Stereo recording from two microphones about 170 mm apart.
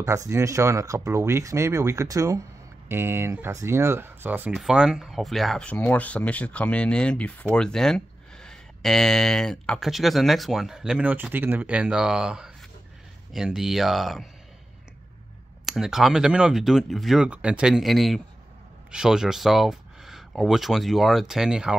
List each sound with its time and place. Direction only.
0.0 s speech: 20° right (ahead or behind); by 14.2 s centre (ahead or behind)
15.6 s speech: centre (ahead or behind)